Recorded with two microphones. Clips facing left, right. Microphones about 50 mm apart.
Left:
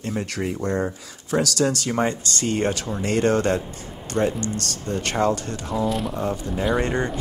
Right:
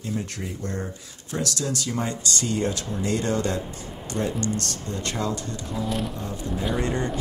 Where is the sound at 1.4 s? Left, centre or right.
Left.